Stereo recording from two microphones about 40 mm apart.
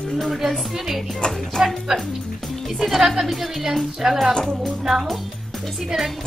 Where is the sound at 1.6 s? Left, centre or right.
Centre.